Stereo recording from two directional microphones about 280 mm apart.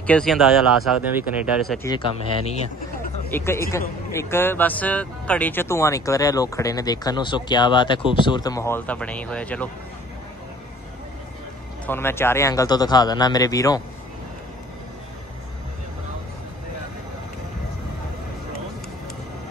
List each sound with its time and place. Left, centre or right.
0.0 s speech: centre
1.9 s speech: centre
11.8 s speech: centre